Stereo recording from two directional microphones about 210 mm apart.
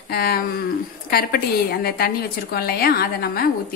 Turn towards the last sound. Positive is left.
turn(degrees=45)  # may be behind; listen again after turning